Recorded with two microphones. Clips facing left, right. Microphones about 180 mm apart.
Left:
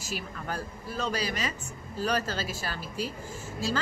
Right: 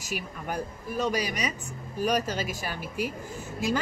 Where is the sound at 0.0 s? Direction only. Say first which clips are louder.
Right 2 dB; 15° right (ahead or behind).